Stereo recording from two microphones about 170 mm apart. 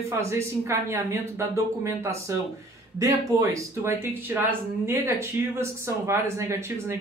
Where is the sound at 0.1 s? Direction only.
15° right (ahead or behind).